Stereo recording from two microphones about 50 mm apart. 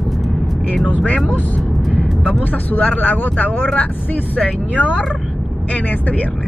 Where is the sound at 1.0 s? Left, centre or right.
Left.